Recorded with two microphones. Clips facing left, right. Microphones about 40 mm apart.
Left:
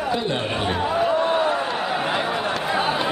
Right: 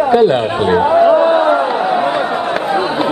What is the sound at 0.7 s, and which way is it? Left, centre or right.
Chatter, right.